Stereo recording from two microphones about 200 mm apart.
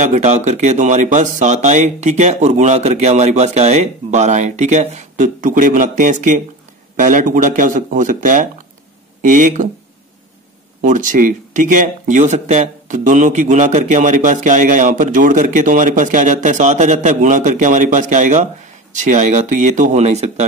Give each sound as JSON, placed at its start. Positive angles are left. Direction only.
{"t": 0.0, "sound": "speech", "side_deg": -35}
{"t": 10.8, "sound": "speech", "side_deg": -40}